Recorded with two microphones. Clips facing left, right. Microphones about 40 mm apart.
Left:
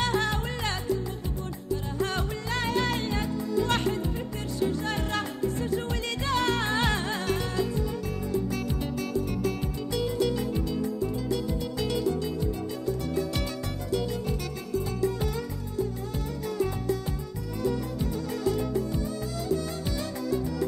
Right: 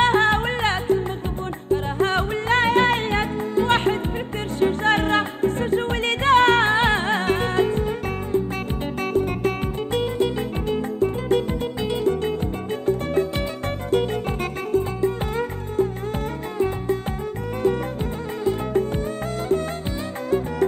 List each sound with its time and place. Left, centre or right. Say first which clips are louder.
0.0 s music: right 10 dB; right
9.1 s music: right 9 dB; right
20.2 s music: right 7 dB; right